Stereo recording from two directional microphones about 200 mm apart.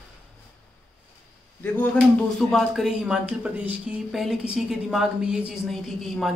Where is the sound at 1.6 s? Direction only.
10° left (ahead or behind).